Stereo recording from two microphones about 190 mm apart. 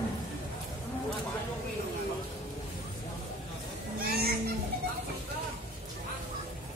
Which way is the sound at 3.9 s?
50° right (ahead or behind).